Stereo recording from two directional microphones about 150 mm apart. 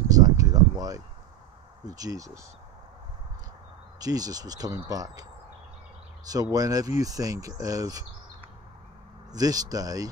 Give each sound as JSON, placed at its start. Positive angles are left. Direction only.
{"t": 0.1, "sound": "a sound", "side_deg": -25}
{"t": 1.9, "sound": "speech", "side_deg": -25}
{"t": 4.0, "sound": "speech", "side_deg": -25}
{"t": 6.2, "sound": "speech", "side_deg": -25}
{"t": 9.3, "sound": "speech", "side_deg": -25}